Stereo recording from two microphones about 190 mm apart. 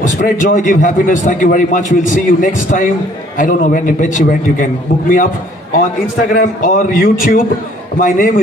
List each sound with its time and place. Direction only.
0.2 s a man's voice: 45° left (ahead or behind)
5.9 s a man's voice: 45° left (ahead or behind)